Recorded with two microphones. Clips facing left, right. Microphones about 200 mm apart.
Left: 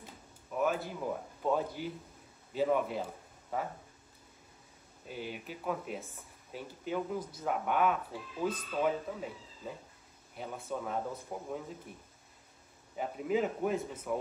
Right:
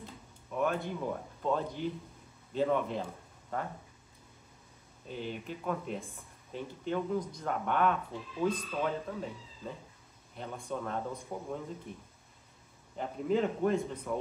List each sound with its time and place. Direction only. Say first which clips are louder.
0.6 s speech: even; 5° left (ahead or behind)
5.0 s a man's voice: right 2 dB; 5° left (ahead or behind)
12.9 s a man's voice: right 1 dB; 5° left (ahead or behind)